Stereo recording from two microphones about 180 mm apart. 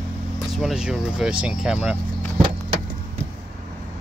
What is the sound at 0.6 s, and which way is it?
Speech, 5° right (ahead or behind).